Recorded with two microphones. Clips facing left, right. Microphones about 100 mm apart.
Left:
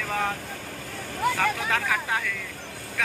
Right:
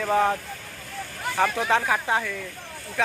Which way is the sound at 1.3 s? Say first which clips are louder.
Right 4 dB; 25° right (ahead or behind).